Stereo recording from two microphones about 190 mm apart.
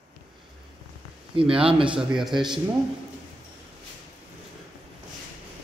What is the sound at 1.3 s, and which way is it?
A man's voice, 30° right (ahead or behind).